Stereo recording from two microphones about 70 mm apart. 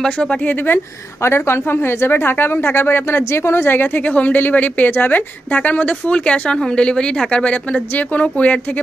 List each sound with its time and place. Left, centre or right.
0.0 s speech: centre
1.2 s speech: left; by 8.8 s centre